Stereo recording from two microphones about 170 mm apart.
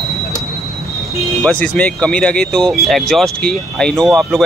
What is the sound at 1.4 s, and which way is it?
Speech, 5° left (ahead or behind).